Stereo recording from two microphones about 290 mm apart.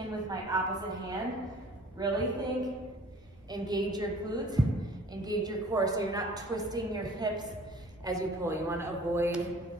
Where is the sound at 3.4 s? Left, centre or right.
Centre.